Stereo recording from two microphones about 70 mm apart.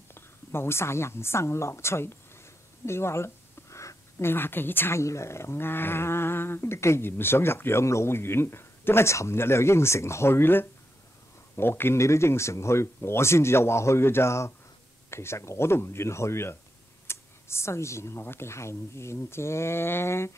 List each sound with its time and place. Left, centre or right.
0.1 s a woman's voice: left
5.0 s speech: left